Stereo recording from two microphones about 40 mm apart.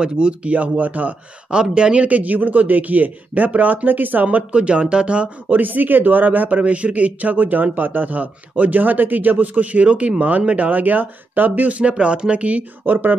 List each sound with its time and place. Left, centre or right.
0.0 s speech: right
1.5 s speech: right
2.0 s speech: right
4.4 s speech: right
5.6 s speech: right
11.8 s speech: right
12.8 s speech: right